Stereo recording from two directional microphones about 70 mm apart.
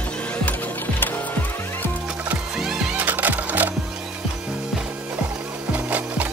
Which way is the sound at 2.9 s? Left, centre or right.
Right.